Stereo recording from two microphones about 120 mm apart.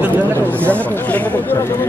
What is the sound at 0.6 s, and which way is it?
Chatter, 10° left (ahead or behind).